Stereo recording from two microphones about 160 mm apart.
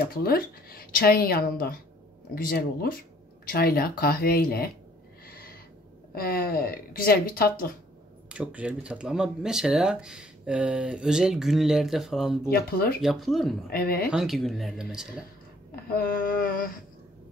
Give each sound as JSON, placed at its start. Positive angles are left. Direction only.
{"t": 0.1, "sound": "a woman's voice", "side_deg": 70}
{"t": 5.2, "sound": "owl", "side_deg": 65}
{"t": 6.1, "sound": "a woman's voice", "side_deg": 70}
{"t": 8.3, "sound": "speech", "side_deg": -5}
{"t": 12.4, "sound": "a woman's voice", "side_deg": 70}
{"t": 13.0, "sound": "speech", "side_deg": 0}
{"t": 13.7, "sound": "a woman's voice", "side_deg": 70}
{"t": 14.1, "sound": "speech", "side_deg": 0}
{"t": 15.7, "sound": "a sound", "side_deg": 70}